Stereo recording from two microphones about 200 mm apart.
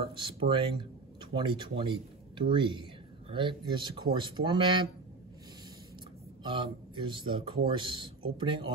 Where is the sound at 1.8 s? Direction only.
25° right (ahead or behind).